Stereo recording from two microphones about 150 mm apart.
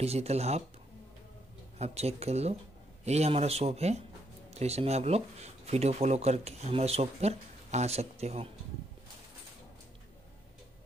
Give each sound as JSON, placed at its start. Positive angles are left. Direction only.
{"t": 0.0, "sound": "speech", "side_deg": -45}
{"t": 1.8, "sound": "speech", "side_deg": -45}